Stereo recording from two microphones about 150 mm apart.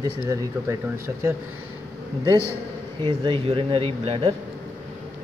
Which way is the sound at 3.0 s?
35° right (ahead or behind).